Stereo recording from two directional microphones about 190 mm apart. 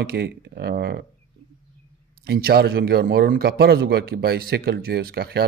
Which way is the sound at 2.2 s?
55° right (ahead or behind).